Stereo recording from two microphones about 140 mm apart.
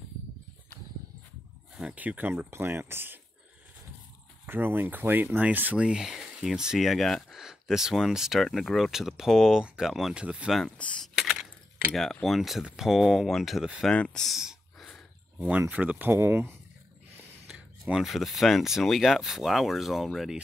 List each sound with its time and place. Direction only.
1.8 s speech: 10° right (ahead or behind)
4.5 s speech: 15° right (ahead or behind)
10.8 s typing: 5° left (ahead or behind)
11.9 s speech: centre (ahead or behind)
14.9 s a sound: centre (ahead or behind)
15.4 s speech: 10° right (ahead or behind)
17.5 s speech: 5° right (ahead or behind)